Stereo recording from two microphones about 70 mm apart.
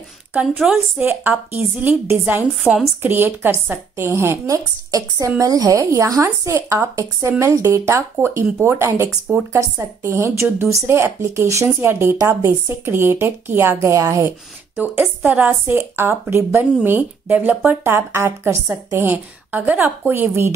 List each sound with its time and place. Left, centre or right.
0.9 s a woman's voice: right
4.5 s a woman's voice: right
11.6 s a woman's voice: right
14.8 s a woman's voice: right
17.6 s a woman's voice: right